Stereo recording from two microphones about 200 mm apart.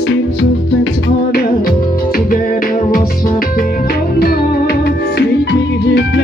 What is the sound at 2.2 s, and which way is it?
Music, 45° left (ahead or behind).